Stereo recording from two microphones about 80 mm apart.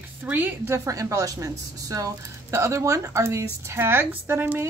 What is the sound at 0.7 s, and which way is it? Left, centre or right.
Speech, right.